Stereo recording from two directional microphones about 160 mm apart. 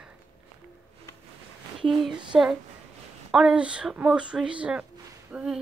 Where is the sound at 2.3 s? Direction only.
5° right (ahead or behind).